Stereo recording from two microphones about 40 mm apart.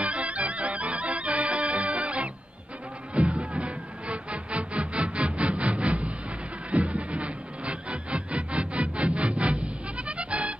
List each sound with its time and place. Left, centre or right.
0.0 s music: right